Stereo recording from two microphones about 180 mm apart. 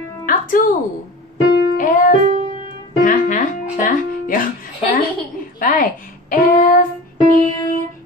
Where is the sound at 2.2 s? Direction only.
45° right (ahead or behind).